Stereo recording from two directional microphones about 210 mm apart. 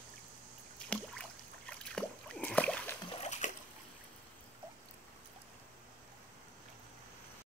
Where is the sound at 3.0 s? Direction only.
30° left (ahead or behind).